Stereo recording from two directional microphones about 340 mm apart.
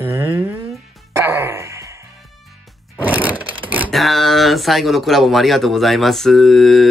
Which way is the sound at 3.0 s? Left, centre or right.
Centre.